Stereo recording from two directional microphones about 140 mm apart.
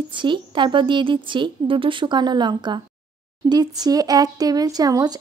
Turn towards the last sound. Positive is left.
turn(degrees=-25)  # may be behind; listen again after turning